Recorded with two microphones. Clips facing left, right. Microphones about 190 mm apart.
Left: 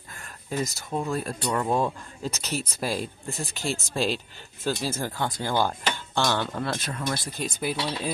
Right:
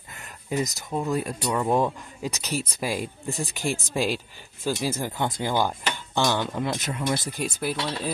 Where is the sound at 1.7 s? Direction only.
15° right (ahead or behind).